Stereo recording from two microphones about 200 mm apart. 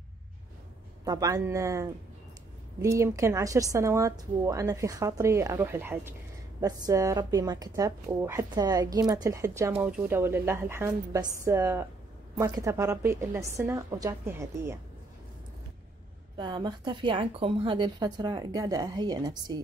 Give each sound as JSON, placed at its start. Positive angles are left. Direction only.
{"t": 1.0, "sound": "a woman's voice", "side_deg": -15}
{"t": 16.3, "sound": "a woman's voice", "side_deg": -25}